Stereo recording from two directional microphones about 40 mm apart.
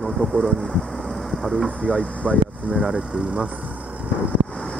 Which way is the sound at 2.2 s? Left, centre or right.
Centre.